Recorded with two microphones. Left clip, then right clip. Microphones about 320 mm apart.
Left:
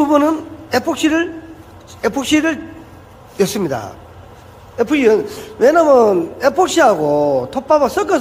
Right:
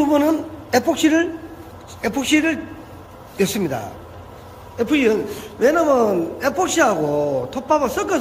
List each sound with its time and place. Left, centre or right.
0.1 s a woman's voice: centre